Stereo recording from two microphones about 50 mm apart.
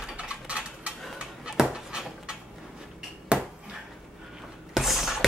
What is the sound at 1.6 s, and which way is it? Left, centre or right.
Dog, centre.